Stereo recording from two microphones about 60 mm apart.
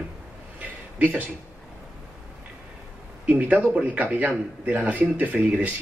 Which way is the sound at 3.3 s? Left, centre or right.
Right.